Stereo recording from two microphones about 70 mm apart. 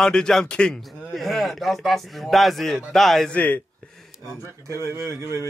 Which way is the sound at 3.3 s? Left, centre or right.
Left.